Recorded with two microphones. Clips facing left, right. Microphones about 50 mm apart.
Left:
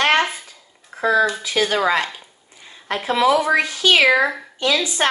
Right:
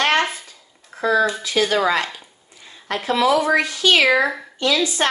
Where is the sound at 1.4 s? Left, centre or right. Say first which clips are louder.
Right 1 dB; left.